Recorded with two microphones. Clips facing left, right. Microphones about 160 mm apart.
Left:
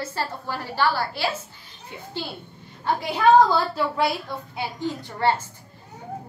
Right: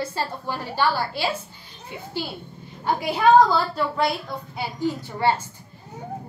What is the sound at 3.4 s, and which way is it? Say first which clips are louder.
A woman's voice: even; centre (ahead or behind).